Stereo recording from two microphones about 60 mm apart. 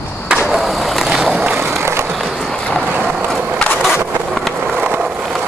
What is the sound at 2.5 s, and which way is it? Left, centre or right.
Vehicle, centre.